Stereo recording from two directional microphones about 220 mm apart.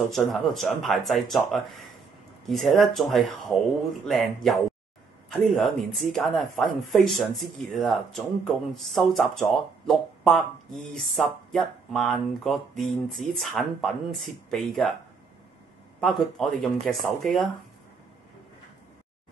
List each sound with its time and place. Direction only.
0.1 s speech: centre (ahead or behind)
16.0 s speech: centre (ahead or behind)